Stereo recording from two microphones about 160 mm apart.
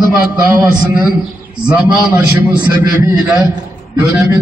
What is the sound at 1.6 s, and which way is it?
Speech, 10° right (ahead or behind).